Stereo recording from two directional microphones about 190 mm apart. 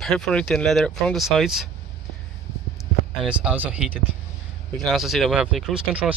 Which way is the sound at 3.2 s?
5° right (ahead or behind).